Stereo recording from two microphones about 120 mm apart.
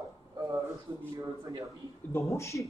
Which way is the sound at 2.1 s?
25° left (ahead or behind).